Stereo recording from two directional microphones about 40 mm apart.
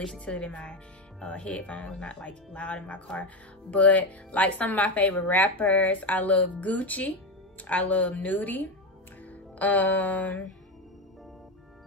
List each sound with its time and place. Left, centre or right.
0.2 s speech: left
9.6 s mantra: left